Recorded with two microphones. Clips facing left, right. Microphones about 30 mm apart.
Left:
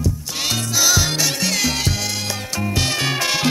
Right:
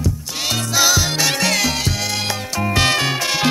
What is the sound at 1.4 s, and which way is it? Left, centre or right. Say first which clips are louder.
Music: right 3 dB; right.